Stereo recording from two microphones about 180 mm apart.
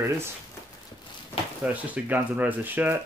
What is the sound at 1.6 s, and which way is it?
Speech, 10° right (ahead or behind).